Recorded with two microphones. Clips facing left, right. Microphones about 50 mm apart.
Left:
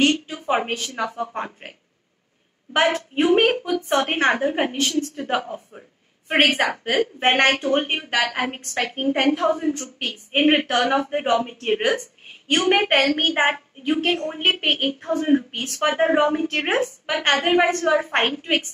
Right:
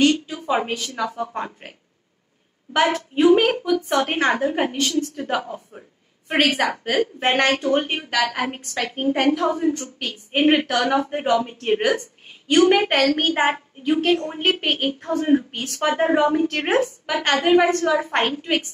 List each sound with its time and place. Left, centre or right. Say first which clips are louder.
0.0 s a woman's voice: right 1 dB; left
15.0 s a woman's voice: right 1 dB; centre
15.5 s a woman's voice: even; left